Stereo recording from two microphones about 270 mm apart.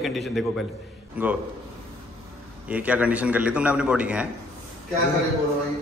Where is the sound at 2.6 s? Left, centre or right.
Centre.